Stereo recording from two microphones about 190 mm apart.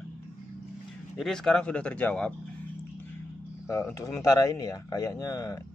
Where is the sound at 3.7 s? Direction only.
15° left (ahead or behind).